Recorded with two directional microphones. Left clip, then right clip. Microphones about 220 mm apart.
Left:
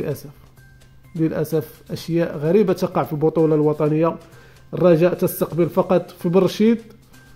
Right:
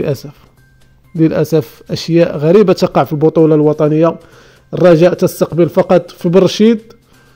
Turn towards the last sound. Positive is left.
turn(degrees=-30)  # may be behind; listen again after turning